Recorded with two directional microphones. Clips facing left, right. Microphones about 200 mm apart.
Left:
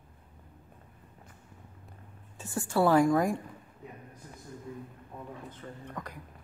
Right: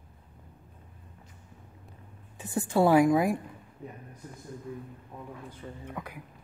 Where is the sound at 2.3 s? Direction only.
20° right (ahead or behind).